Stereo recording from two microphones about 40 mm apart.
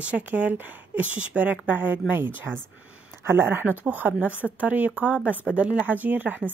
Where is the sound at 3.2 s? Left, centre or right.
Right.